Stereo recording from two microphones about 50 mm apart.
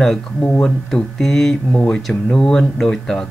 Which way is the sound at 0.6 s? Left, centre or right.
Centre.